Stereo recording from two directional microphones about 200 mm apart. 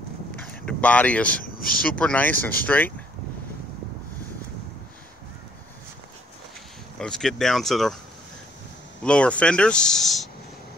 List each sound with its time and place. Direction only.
0.4 s speech: 5° left (ahead or behind)
1.4 s speech: 45° left (ahead or behind)
1.8 s speech: 5° left (ahead or behind)
7.0 s speech: 5° left (ahead or behind)
9.0 s speech: 5° left (ahead or behind)